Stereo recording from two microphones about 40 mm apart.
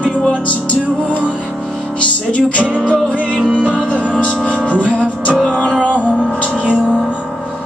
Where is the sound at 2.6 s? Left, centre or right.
Right.